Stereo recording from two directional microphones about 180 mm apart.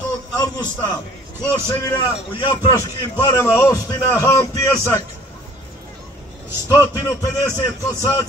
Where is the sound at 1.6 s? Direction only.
25° left (ahead or behind).